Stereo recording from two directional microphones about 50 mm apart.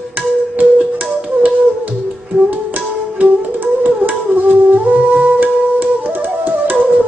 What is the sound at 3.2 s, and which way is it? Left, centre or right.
Music, right.